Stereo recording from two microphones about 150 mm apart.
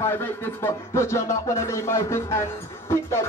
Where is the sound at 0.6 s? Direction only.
20° left (ahead or behind).